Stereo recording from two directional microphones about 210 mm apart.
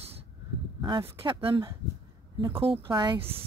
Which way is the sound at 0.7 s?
20° right (ahead or behind).